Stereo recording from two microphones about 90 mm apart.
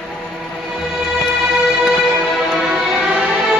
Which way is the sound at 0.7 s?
5° right (ahead or behind).